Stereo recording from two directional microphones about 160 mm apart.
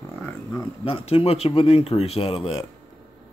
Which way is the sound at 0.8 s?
35° left (ahead or behind).